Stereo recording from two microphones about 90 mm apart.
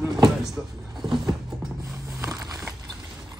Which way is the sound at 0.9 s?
55° right (ahead or behind).